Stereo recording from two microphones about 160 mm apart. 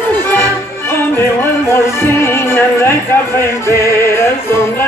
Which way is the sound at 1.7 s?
15° left (ahead or behind).